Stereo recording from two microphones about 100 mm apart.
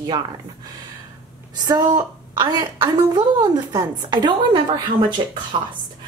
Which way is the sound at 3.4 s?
40° right (ahead or behind).